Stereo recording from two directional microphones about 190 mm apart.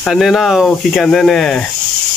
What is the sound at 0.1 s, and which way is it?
Speech, centre (ahead or behind).